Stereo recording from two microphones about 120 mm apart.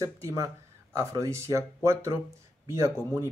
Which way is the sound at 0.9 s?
25° right (ahead or behind).